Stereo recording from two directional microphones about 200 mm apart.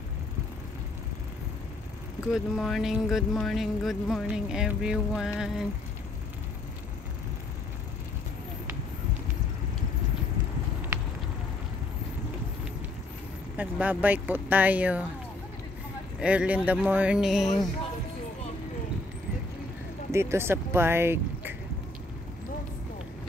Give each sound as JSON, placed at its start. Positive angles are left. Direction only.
{"t": 2.3, "sound": "speech", "side_deg": 0}
{"t": 13.6, "sound": "speech", "side_deg": -10}
{"t": 16.2, "sound": "speech", "side_deg": -5}
{"t": 20.1, "sound": "speech", "side_deg": -15}